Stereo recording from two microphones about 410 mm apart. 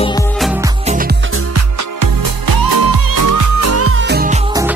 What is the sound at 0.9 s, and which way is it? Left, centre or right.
Music, right.